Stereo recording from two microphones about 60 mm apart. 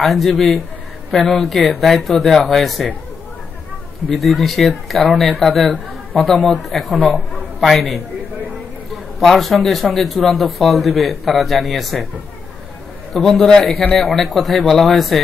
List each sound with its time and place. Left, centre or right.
0.0 s a man's voice: centre
4.1 s a man's voice: centre
7.0 s speech: left
7.6 s a man's voice: centre
13.1 s a man's voice: centre